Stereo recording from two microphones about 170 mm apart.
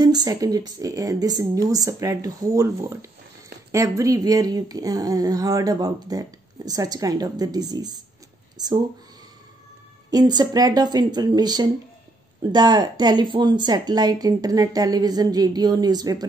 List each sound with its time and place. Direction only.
0.0 s speech: 20° right (ahead or behind)
10.1 s speech: 25° right (ahead or behind)